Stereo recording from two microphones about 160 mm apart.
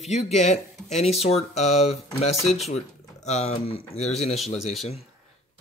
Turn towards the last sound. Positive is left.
turn(degrees=40)  # may be behind; listen again after turning